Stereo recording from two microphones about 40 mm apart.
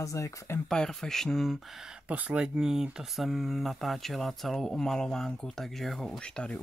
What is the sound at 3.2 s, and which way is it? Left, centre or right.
Speech, centre.